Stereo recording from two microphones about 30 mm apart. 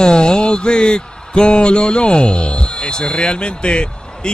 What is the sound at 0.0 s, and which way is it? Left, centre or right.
Mantra, left.